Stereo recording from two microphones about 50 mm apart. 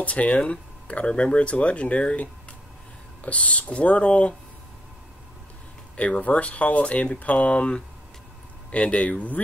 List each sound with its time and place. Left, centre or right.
0.0 s speech: left
5.9 s speech: left